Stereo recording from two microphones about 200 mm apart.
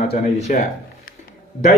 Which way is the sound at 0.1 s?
35° left (ahead or behind).